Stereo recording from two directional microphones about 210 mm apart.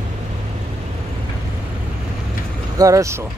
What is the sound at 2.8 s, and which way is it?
Speech, 15° right (ahead or behind).